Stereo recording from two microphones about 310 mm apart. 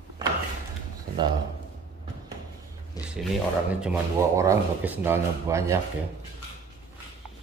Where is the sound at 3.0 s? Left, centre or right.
Centre.